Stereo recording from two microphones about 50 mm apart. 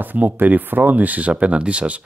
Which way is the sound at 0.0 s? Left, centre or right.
Right.